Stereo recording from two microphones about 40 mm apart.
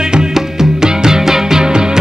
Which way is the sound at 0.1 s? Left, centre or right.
Centre.